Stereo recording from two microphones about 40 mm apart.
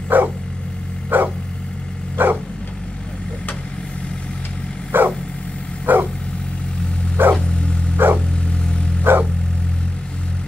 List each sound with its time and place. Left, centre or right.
0.1 s dog: right
4.9 s dog: right
7.2 s dog: right